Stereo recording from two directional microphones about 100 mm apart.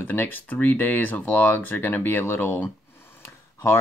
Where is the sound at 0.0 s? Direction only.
20° left (ahead or behind).